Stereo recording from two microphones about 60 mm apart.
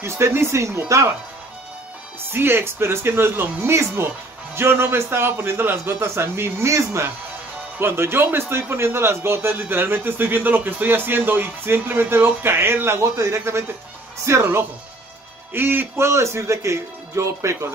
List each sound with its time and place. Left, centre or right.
0.0 s a man's voice: right
2.3 s a man's voice: right
15.5 s a man's voice: right
16.0 s a man's voice: right